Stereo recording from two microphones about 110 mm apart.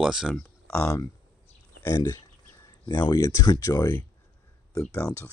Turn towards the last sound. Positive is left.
turn(degrees=20)  # may be behind; listen again after turning